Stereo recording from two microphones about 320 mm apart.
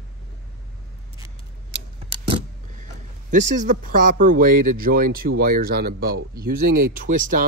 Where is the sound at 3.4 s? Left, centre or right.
Right.